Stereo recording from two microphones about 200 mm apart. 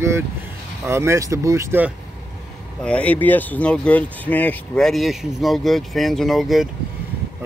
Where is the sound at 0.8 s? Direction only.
15° right (ahead or behind).